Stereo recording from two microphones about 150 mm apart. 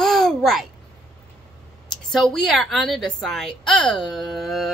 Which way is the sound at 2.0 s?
Centre (ahead or behind).